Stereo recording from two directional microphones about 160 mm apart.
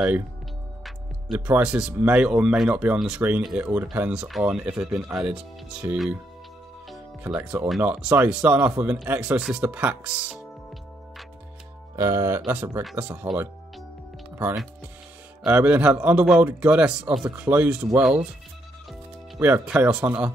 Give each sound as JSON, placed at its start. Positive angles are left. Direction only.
{"t": 0.8, "sound": "speech", "side_deg": -5}
{"t": 6.9, "sound": "speech", "side_deg": -5}
{"t": 11.9, "sound": "speech", "side_deg": -20}
{"t": 15.4, "sound": "speech", "side_deg": -10}
{"t": 19.3, "sound": "speech", "side_deg": -15}